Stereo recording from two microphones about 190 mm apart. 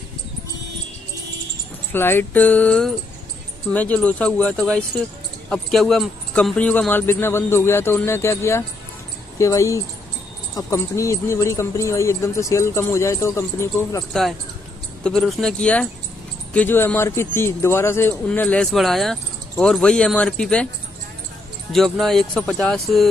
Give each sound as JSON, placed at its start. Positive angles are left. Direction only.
{"t": 1.9, "sound": "speech", "side_deg": 10}
{"t": 15.0, "sound": "speech", "side_deg": 0}
{"t": 21.7, "sound": "speech", "side_deg": 0}